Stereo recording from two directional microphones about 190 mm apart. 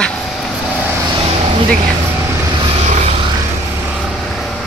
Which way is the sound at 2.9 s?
40° right (ahead or behind).